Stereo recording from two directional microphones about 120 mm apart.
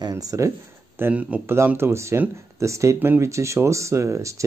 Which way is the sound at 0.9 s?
15° right (ahead or behind).